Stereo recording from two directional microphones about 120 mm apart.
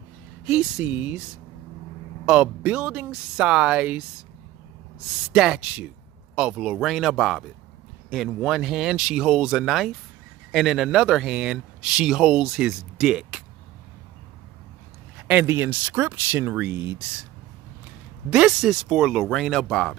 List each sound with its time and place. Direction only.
0.5 s speech: 5° right (ahead or behind)
2.2 s speech: 10° right (ahead or behind)
5.3 s a man's voice: 5° right (ahead or behind)
15.1 s speech: 10° right (ahead or behind)
18.3 s a man's voice: 5° right (ahead or behind)